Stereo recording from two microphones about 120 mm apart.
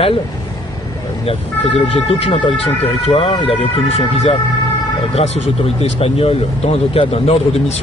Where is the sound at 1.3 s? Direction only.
55° left (ahead or behind).